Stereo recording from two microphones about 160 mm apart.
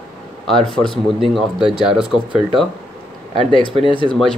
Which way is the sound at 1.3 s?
Centre (ahead or behind).